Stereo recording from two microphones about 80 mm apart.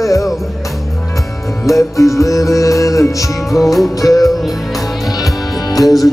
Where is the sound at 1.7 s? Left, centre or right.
Left.